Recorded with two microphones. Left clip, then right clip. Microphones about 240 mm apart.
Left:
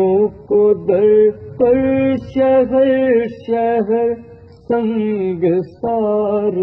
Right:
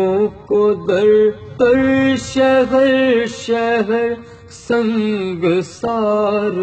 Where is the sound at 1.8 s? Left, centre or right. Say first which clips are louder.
Right 1 dB; right.